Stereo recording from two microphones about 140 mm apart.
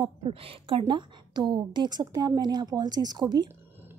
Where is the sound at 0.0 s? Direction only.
40° right (ahead or behind).